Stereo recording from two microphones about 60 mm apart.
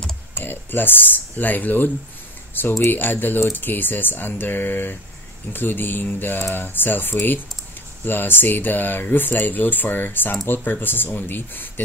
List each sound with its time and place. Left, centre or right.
0.4 s speech: left